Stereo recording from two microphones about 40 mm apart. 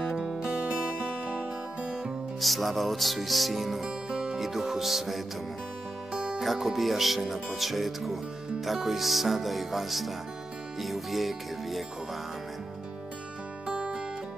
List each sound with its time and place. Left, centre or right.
0.0 s music: centre
0.6 s music: right
2.4 s speech: centre
3.8 s music: centre
4.4 s speech: centre
6.1 s music: right
6.4 s speech: centre
13.7 s music: right